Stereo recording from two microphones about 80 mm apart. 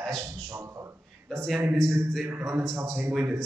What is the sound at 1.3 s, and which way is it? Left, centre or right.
Speech, centre.